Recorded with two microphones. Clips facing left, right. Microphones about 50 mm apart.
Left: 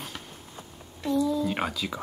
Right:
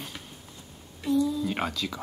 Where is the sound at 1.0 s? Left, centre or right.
Centre.